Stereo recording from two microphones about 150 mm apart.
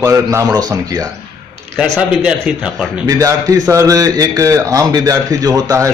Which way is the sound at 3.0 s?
25° right (ahead or behind).